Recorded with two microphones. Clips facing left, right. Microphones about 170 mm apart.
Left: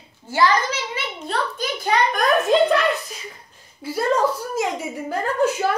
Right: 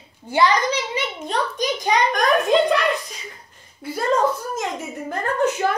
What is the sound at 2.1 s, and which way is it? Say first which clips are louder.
A woman's voice: right 1 dB; 5° left (ahead or behind).